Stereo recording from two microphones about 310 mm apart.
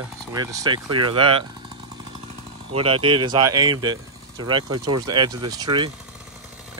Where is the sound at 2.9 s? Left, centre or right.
Centre.